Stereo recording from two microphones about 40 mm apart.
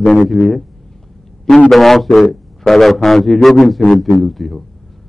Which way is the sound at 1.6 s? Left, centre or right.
Centre.